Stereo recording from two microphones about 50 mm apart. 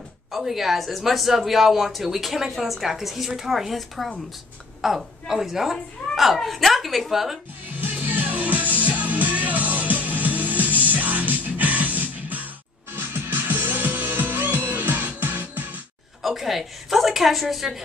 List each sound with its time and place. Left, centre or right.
0.4 s a woman's voice: centre
8.0 s music: right
16.2 s a woman's voice: centre